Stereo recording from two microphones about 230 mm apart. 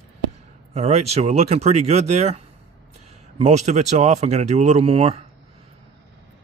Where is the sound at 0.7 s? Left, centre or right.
Right.